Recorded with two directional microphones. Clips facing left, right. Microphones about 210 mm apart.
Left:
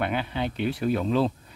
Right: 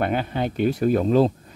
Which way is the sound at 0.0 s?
45° right (ahead or behind).